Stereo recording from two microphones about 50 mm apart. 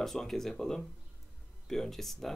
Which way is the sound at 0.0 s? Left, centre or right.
Centre.